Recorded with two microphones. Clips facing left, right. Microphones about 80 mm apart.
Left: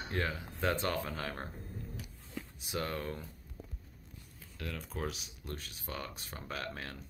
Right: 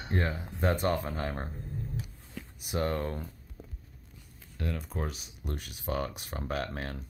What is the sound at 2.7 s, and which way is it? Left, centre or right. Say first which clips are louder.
Speech: right 6 dB; right.